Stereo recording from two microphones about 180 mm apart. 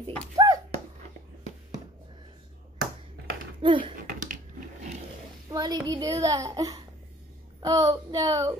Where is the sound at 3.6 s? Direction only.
25° right (ahead or behind).